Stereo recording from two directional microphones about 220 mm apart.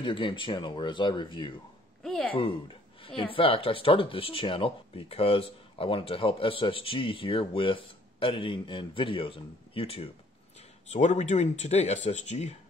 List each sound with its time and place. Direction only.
0.0 s speech: 20° left (ahead or behind)
2.0 s a sound: 5° left (ahead or behind)
2.3 s a woman's voice: 25° left (ahead or behind)